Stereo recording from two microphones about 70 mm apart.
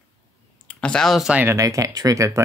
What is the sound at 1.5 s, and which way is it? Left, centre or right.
Speech, right.